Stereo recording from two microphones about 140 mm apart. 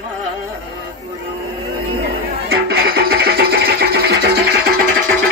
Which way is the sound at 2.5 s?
90° right.